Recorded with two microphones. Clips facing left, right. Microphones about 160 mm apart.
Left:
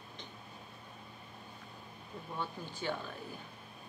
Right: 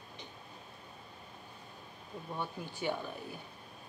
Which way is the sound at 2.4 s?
15° right (ahead or behind).